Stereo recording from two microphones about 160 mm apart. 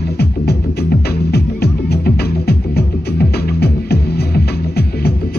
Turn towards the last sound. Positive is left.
turn(degrees=80)